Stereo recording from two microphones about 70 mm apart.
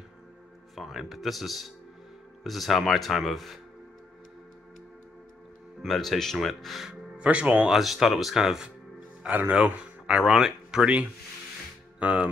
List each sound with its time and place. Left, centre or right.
0.7 s speech: centre
5.8 s speech: centre
7.2 s speech: centre
7.7 s speech: centre
9.2 s speech: right
12.0 s speech: centre